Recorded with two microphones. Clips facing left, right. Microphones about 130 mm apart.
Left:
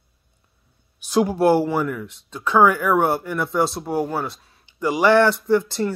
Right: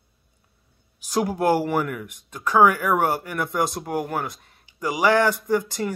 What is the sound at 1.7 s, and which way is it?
Speech, 15° right (ahead or behind).